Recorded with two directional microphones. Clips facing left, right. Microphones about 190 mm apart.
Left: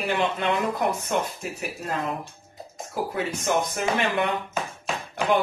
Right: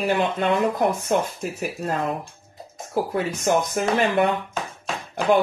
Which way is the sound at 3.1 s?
40° right (ahead or behind).